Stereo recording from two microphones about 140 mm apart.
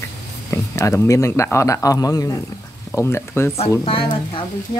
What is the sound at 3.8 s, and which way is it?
Speech, 40° left (ahead or behind).